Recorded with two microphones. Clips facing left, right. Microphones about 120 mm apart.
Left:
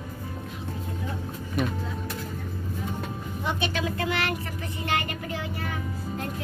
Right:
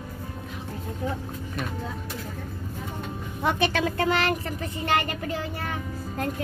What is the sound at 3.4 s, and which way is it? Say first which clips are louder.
Speech: right 5 dB; 50° right (ahead or behind).